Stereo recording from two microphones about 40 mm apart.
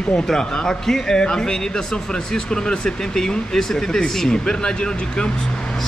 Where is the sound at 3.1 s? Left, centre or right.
Centre.